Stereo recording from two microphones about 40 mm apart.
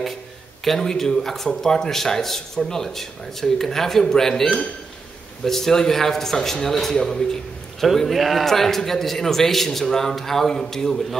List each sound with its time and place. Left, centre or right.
0.7 s speech: centre
7.8 s speech: centre